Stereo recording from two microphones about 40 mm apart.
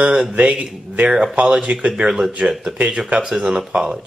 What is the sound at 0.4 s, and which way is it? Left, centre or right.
Speech, right.